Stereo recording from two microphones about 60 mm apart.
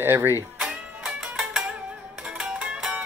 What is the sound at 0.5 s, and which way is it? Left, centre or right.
Music, centre.